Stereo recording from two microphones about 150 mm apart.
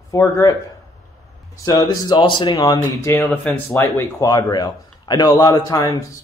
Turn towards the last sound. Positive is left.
turn(degrees=20)  # may be behind; listen again after turning